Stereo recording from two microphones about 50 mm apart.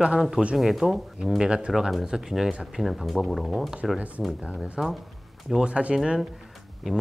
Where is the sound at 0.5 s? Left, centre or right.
Centre.